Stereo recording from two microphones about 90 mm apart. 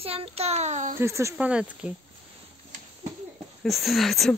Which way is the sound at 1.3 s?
15° right (ahead or behind).